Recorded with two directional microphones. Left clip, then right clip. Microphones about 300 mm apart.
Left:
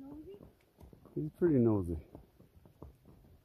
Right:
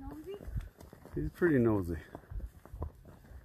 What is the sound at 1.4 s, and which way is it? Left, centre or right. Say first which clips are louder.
Speech: right 1 dB; centre.